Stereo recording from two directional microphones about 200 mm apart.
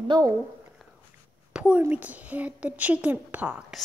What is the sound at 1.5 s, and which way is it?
A woman's voice, 5° right (ahead or behind).